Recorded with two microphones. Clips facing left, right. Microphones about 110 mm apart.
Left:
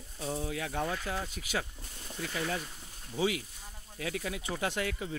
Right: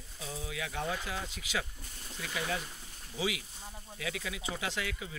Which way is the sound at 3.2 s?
45° left (ahead or behind).